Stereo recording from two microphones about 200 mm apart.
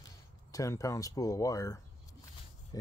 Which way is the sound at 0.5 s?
15° left (ahead or behind).